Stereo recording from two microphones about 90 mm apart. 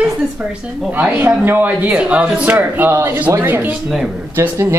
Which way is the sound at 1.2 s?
20° right (ahead or behind).